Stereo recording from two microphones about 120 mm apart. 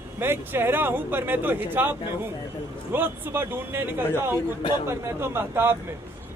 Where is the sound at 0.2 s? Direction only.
20° right (ahead or behind).